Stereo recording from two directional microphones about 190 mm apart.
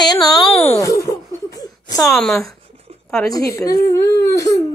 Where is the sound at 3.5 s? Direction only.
15° left (ahead or behind).